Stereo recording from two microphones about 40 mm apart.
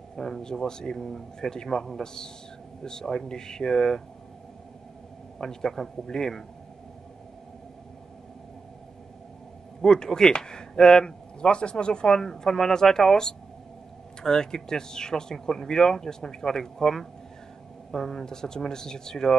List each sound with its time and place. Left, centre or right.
0.1 s speech: centre
5.4 s speech: centre
9.8 s speech: centre
12.2 s speech: centre